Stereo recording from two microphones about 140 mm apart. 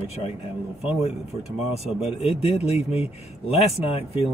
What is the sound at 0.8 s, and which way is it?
Speech, 45° left (ahead or behind).